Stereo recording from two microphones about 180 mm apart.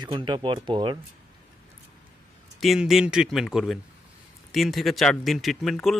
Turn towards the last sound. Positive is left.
turn(degrees=0)  # may be behind; listen again after turning